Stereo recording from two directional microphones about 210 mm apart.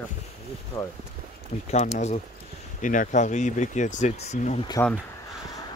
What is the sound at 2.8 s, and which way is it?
Speech, 40° left (ahead or behind).